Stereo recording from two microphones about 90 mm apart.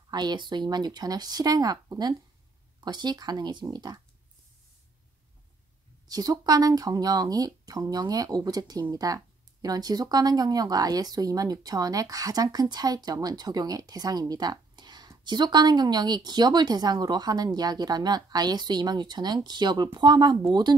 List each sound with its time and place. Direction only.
0.1 s speech: 55° right (ahead or behind)
6.0 s speech: 45° right (ahead or behind)